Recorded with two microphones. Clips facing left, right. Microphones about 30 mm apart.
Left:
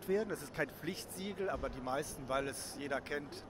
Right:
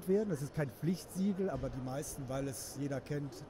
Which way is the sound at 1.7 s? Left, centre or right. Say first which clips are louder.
Left 2 dB; left.